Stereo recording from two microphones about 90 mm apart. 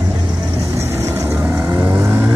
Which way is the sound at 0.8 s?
35° right (ahead or behind).